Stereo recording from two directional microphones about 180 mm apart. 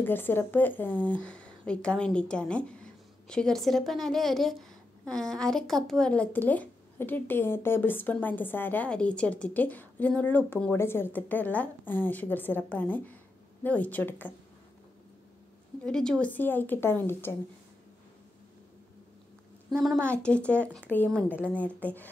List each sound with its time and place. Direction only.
0.0 s speech: 10° left (ahead or behind)
15.8 s speech: 5° left (ahead or behind)
19.8 s speech: 5° left (ahead or behind)